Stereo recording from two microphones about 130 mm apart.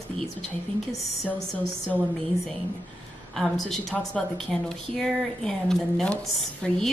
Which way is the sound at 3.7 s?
Centre (ahead or behind).